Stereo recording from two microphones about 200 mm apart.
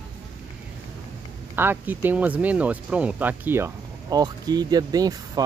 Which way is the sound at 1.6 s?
10° right (ahead or behind).